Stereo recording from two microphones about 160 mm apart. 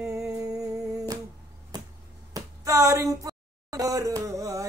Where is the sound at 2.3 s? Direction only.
20° right (ahead or behind).